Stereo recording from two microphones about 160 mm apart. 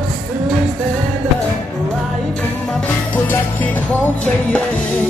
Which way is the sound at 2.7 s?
10° left (ahead or behind).